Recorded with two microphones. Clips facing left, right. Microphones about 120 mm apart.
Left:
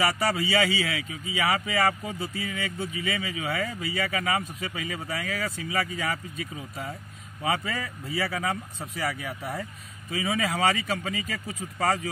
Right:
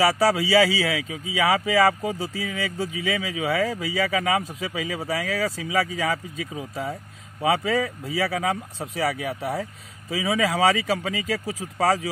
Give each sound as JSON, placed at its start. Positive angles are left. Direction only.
{"t": 0.0, "sound": "speech", "side_deg": -90}
{"t": 7.4, "sound": "speech", "side_deg": -90}
{"t": 10.1, "sound": "speech", "side_deg": -90}